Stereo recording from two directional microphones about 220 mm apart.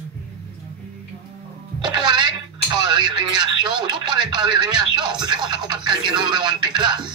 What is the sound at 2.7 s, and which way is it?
Speech, 20° right (ahead or behind).